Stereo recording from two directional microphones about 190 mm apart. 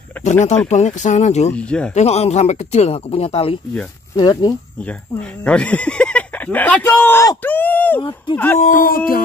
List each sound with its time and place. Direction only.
0.2 s a sound: 5° left (ahead or behind)
0.7 s speech: 40° left (ahead or behind)
1.5 s speech: 5° left (ahead or behind)
2.0 s speech: 35° left (ahead or behind)
5.4 s speech: 5° left (ahead or behind)
8.0 s speech: 20° left (ahead or behind)
8.5 s a sound: 45° left (ahead or behind)